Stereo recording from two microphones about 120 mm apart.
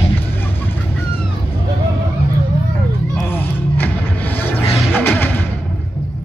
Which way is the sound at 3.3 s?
15° left (ahead or behind).